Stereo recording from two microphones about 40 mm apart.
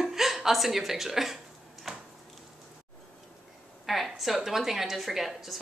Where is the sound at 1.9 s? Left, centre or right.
Centre.